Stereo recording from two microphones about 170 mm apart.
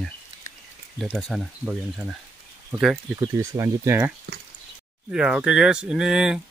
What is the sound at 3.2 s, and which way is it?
Speech, 20° right (ahead or behind).